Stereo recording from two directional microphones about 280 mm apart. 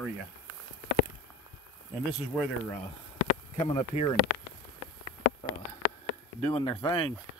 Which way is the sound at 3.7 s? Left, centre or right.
Centre.